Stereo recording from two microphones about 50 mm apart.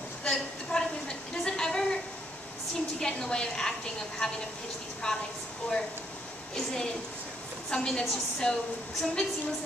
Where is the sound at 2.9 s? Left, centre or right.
Centre.